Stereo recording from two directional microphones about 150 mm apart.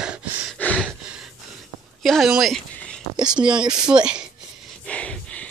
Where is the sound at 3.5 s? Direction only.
30° right (ahead or behind).